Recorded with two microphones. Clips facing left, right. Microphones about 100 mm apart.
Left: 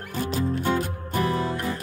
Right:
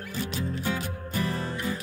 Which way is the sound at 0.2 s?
50° left (ahead or behind).